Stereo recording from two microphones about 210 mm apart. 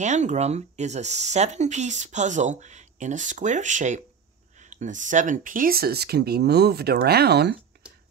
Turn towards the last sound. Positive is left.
turn(degrees=-50)  # may be behind; listen again after turning